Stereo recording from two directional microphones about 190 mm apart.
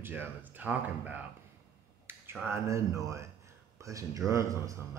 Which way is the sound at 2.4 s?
15° right (ahead or behind).